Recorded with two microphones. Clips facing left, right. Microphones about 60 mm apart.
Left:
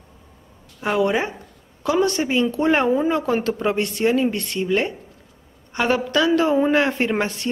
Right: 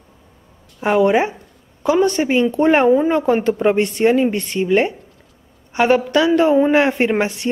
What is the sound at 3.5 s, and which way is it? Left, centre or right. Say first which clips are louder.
A woman's voice: right 6 dB; centre.